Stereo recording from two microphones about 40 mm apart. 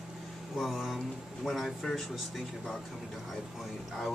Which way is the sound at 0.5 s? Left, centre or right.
Centre.